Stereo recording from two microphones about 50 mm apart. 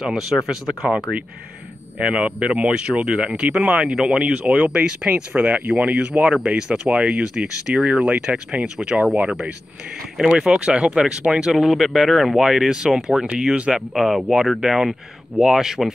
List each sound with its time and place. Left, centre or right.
0.0 s speech: centre
2.0 s speech: right
11.5 s speech: centre
13.7 s speech: centre